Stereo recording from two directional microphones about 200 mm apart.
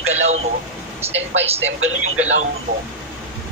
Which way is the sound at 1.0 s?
30° right (ahead or behind).